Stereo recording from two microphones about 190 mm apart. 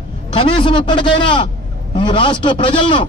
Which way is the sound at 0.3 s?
25° left (ahead or behind).